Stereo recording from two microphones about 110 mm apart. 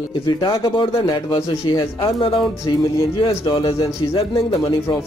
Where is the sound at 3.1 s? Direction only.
45° left (ahead or behind).